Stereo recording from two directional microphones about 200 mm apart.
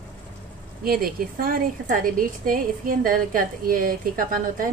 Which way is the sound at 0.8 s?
45° right (ahead or behind).